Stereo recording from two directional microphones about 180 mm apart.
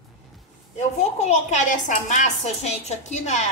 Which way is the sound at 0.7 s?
40° left (ahead or behind).